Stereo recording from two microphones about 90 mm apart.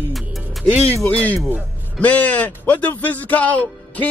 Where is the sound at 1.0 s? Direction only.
15° left (ahead or behind).